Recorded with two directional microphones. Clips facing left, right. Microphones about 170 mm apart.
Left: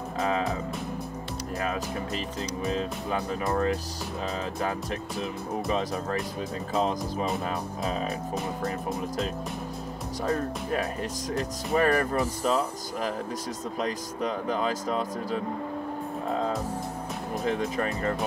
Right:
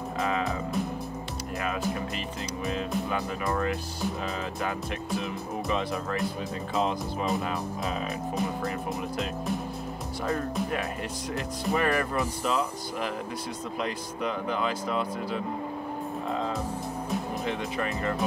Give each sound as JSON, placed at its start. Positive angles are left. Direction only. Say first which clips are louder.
{"t": 0.2, "sound": "music", "louder": "left 2 dB", "side_deg": 35}
{"t": 2.6, "sound": "speech", "louder": "right 1 dB", "side_deg": 35}
{"t": 5.7, "sound": "speech", "louder": "even", "side_deg": 35}
{"t": 16.3, "sound": "music", "louder": "left 3 dB", "side_deg": 40}
{"t": 17.5, "sound": "speech", "louder": "left 5 dB", "side_deg": 40}